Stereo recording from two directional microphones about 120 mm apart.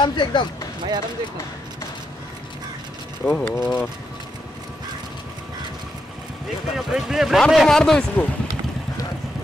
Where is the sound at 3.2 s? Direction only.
5° left (ahead or behind).